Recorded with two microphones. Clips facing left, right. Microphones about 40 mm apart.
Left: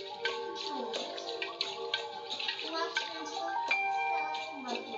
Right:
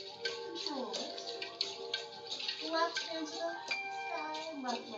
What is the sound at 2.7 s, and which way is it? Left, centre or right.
Music, left.